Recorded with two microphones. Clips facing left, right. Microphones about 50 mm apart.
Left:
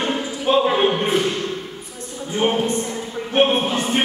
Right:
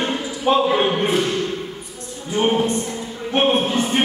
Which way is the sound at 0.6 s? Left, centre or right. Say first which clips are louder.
Even; centre.